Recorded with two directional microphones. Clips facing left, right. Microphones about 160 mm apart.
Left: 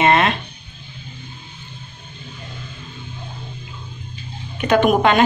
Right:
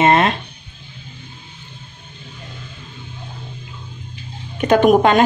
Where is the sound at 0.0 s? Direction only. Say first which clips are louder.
Right 2 dB; 35° right (ahead or behind).